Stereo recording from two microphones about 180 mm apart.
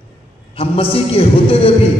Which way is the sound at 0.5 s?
30° left (ahead or behind).